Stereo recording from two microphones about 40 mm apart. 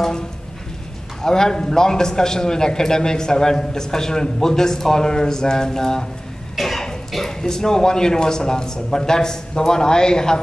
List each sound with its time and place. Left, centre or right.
1.2 s a man's voice: centre
6.5 s cough: centre
7.4 s a man's voice: centre